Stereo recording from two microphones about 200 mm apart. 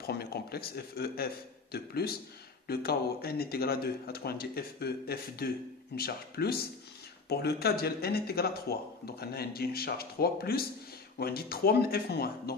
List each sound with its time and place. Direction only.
0.0 s speech: 50° left (ahead or behind)